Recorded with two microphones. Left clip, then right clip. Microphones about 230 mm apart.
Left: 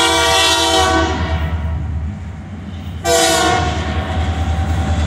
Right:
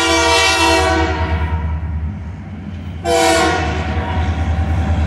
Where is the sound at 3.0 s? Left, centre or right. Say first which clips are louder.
Left 1 dB; centre.